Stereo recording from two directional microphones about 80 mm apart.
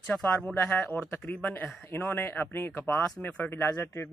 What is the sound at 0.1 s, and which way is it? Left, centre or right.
A man's voice, centre.